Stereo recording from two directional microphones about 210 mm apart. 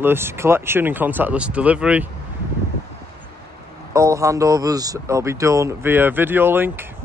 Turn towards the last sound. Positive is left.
turn(degrees=-10)  # may be behind; listen again after turning